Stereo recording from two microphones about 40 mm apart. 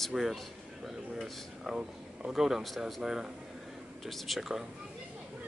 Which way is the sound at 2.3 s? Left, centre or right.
Centre.